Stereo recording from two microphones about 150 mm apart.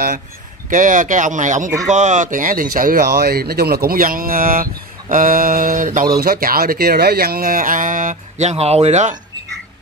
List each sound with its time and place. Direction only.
0.7 s speech: 60° right (ahead or behind)
6.2 s speech: 80° right; by 9.1 s 50° right (ahead or behind)